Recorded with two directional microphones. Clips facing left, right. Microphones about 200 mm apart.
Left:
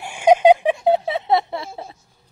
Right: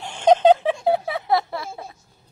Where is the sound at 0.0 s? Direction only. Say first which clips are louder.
Left 2 dB; 10° left (ahead or behind).